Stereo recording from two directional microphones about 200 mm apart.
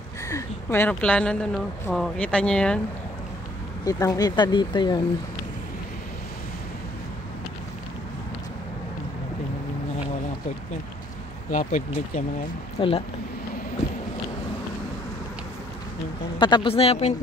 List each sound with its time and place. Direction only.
0.3 s speech: 10° left (ahead or behind)
3.8 s speech: 20° left (ahead or behind)
11.5 s speech: 40° left (ahead or behind)
12.7 s speech: 30° left (ahead or behind)
16.3 s speech: 25° left (ahead or behind)